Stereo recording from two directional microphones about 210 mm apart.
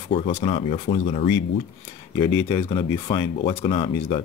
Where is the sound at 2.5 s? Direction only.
20° left (ahead or behind).